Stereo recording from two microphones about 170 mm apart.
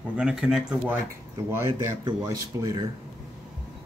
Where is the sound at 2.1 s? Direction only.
20° right (ahead or behind).